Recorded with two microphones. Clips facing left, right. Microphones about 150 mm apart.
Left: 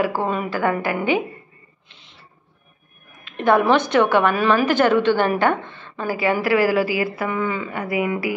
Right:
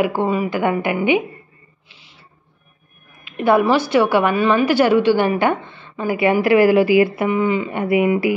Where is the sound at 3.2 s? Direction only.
10° right (ahead or behind).